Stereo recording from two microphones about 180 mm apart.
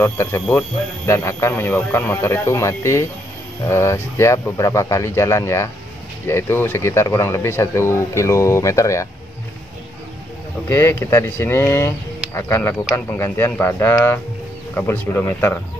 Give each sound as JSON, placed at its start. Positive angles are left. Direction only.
{"t": 0.0, "sound": "speech", "side_deg": 15}
{"t": 10.7, "sound": "speech", "side_deg": 15}